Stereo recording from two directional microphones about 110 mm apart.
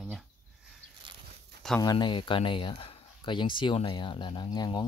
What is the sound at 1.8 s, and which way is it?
Speech, 40° left (ahead or behind).